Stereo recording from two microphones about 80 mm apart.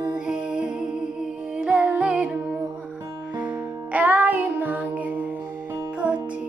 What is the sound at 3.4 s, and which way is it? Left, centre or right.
Music, centre.